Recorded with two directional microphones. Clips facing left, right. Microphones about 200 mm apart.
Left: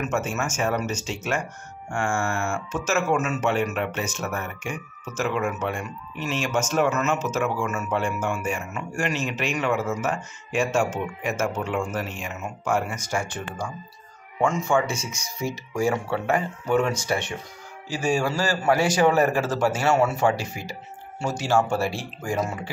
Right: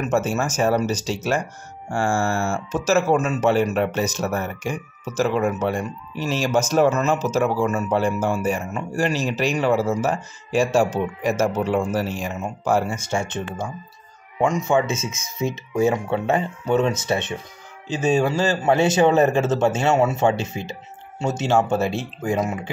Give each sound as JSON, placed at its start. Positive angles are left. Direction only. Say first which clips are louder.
{"t": 0.0, "sound": "speech", "louder": "right 5 dB", "side_deg": -35}